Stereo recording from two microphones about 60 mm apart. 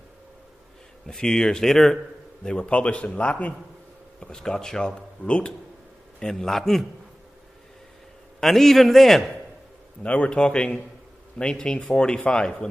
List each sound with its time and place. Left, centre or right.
1.0 s speech: centre
2.4 s speech: centre
4.2 s speech: centre
8.4 s a man's voice: centre
10.0 s speech: left